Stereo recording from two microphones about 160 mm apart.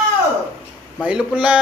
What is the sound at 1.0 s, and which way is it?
Speech, 5° right (ahead or behind).